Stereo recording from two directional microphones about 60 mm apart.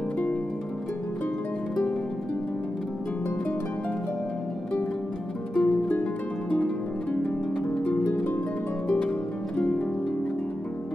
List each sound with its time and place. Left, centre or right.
5.5 s music: centre
6.5 s harp: left